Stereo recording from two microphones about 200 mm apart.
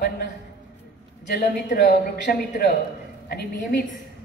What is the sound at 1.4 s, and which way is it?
A woman's voice, 45° left (ahead or behind).